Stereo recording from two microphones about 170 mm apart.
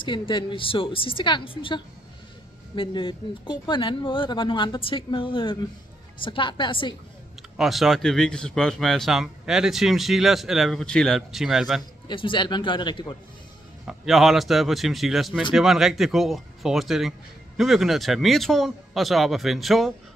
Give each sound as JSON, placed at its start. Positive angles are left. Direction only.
{"t": 0.0, "sound": "a woman's voice", "side_deg": 30}
{"t": 7.5, "sound": "speech", "side_deg": 0}
{"t": 12.1, "sound": "speech", "side_deg": 30}
{"t": 13.8, "sound": "speech", "side_deg": 0}